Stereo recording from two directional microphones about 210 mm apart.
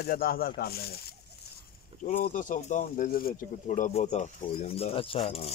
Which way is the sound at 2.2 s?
40° left (ahead or behind).